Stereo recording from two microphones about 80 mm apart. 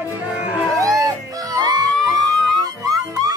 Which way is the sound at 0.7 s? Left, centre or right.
Right.